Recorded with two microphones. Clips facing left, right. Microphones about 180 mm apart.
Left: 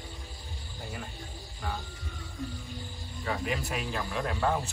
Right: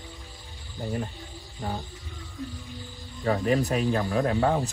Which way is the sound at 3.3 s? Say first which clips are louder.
Right 9 dB; 40° right (ahead or behind).